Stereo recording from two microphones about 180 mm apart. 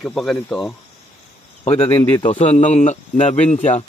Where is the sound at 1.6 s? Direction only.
35° left (ahead or behind).